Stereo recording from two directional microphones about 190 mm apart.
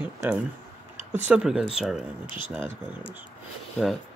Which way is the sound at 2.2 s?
25° left (ahead or behind).